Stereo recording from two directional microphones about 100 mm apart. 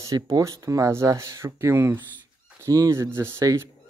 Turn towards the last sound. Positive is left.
turn(degrees=-30)  # may be behind; listen again after turning